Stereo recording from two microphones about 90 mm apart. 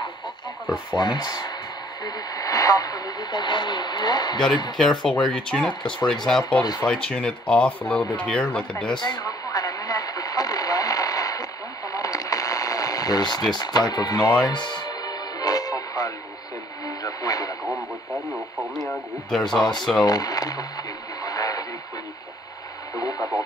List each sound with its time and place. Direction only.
0.9 s speech: 55° left (ahead or behind)
2.0 s radio: 40° left (ahead or behind)
4.7 s speech: 5° left (ahead or behind)
6.6 s speech: 45° left (ahead or behind)
6.9 s speech: 10° left (ahead or behind)
8.9 s radio: 50° left (ahead or behind)
13.6 s speech: 50° left (ahead or behind)
14.4 s radio: 55° left (ahead or behind)
18.9 s radio: 5° left (ahead or behind)
19.8 s speech: centre (ahead or behind)
20.1 s speech: 45° left (ahead or behind)
21.2 s radio: 45° left (ahead or behind)
22.9 s radio: 40° left (ahead or behind)